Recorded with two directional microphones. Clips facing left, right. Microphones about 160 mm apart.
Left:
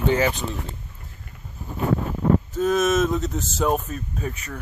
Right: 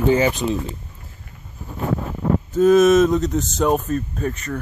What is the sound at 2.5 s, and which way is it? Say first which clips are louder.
Speech: right 8 dB; centre (ahead or behind).